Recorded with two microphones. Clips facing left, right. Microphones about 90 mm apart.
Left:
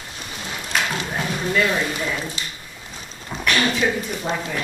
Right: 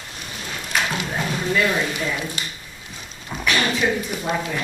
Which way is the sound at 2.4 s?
50° right (ahead or behind).